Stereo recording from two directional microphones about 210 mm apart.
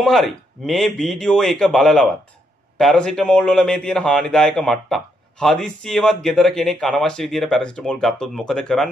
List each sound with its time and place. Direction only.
0.0 s a man's voice: centre (ahead or behind)